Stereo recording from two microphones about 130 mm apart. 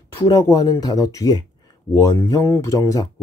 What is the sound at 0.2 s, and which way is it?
Speech, 30° left (ahead or behind).